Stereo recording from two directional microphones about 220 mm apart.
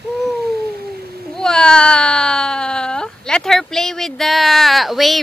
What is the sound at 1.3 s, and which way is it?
Baby cry, 5° left (ahead or behind).